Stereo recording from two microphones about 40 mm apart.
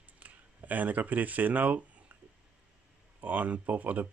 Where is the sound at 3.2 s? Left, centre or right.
Right.